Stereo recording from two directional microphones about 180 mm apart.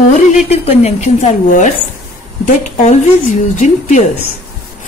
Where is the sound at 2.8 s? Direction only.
45° left (ahead or behind).